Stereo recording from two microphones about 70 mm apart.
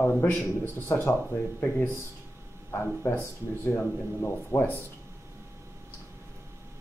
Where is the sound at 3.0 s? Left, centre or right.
Left.